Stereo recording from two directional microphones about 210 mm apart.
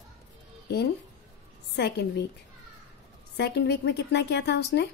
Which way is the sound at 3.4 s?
50° left (ahead or behind).